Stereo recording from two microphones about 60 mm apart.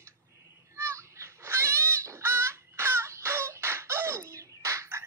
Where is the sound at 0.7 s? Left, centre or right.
Right.